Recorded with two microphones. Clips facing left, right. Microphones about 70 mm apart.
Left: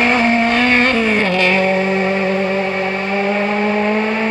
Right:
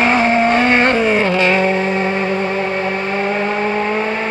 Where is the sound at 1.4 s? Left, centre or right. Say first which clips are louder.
Even; centre.